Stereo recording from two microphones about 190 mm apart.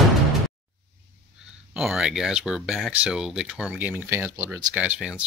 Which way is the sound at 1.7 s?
Centre (ahead or behind).